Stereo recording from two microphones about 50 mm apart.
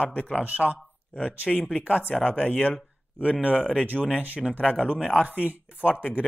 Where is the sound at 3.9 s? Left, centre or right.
Centre.